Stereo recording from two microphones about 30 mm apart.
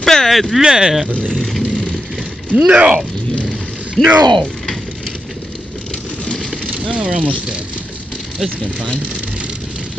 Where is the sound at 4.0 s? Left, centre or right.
Centre.